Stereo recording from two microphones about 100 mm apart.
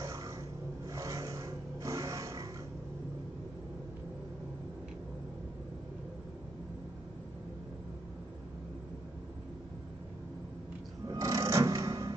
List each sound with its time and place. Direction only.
0.0 s a sound: 35° right (ahead or behind)
0.8 s music: 35° right (ahead or behind)
11.1 s drawer open or close: 35° right (ahead or behind)